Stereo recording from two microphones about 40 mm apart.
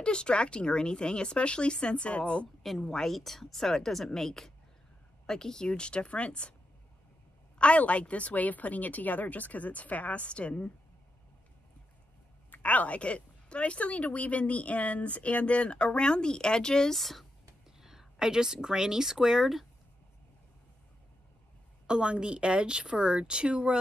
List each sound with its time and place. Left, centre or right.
0.0 s speech: left
2.8 s a woman's voice: centre
3.1 s a woman's voice: centre; by 6.5 s left
7.5 s a woman's voice: left
12.4 s a woman's voice: left; by 16.9 s centre
16.9 s a woman's voice: centre
17.6 s speech: centre
21.8 s speech: right